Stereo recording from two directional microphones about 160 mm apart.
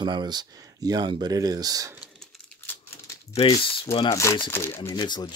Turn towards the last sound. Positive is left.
turn(degrees=25)  # may be behind; listen again after turning